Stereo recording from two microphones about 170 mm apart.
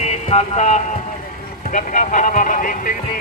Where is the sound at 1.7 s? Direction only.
50° left (ahead or behind).